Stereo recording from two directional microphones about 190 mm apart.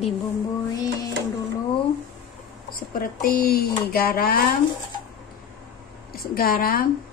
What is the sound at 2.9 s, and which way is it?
Speech, 50° left (ahead or behind).